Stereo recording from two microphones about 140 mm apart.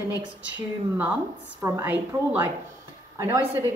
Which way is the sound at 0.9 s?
10° right (ahead or behind).